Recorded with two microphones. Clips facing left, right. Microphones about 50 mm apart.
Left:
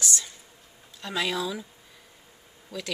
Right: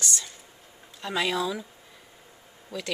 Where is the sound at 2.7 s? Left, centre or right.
Centre.